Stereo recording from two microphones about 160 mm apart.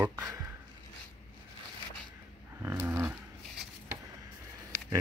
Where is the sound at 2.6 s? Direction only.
15° right (ahead or behind).